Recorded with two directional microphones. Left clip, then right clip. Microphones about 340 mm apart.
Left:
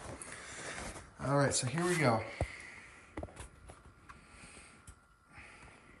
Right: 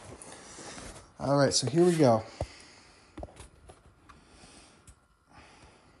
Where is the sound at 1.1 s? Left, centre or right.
Centre.